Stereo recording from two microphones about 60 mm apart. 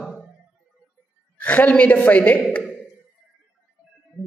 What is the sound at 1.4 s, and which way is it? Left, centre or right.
A man's voice, left.